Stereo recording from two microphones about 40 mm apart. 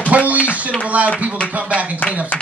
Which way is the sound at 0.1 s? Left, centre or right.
Right.